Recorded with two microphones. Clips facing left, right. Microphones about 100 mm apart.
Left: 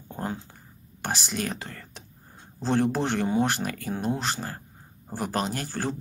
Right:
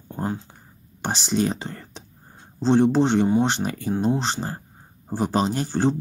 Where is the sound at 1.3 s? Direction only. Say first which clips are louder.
Right 8 dB; 25° right (ahead or behind).